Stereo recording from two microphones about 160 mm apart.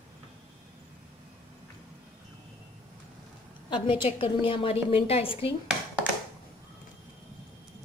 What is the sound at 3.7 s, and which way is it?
A woman's voice, 30° left (ahead or behind).